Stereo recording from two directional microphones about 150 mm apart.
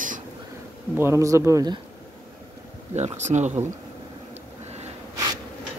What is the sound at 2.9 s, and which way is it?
Speech, 50° right (ahead or behind).